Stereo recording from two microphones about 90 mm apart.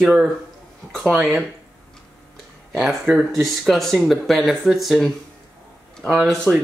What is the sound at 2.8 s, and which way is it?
Speech, 5° right (ahead or behind).